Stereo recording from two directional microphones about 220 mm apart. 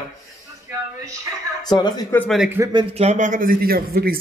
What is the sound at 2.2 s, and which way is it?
Speech, centre (ahead or behind).